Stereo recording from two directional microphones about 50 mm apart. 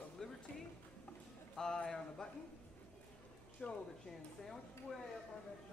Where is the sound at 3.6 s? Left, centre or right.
Centre.